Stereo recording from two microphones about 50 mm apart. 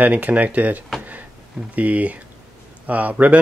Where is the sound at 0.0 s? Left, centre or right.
Right.